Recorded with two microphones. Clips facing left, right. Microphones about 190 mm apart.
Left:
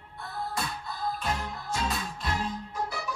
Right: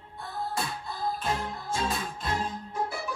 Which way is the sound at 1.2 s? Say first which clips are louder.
Right 1 dB; 25° right (ahead or behind).